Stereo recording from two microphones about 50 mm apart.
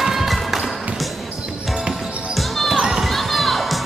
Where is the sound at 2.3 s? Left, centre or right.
Centre.